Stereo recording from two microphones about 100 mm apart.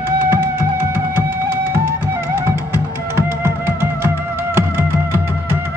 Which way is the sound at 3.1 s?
25° right (ahead or behind).